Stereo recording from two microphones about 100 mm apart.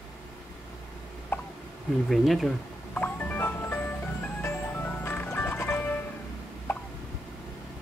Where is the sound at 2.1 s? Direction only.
Centre (ahead or behind).